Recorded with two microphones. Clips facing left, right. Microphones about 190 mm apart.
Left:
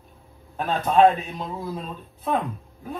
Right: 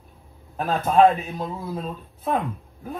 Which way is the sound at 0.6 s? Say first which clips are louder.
Right 1 dB; centre (ahead or behind).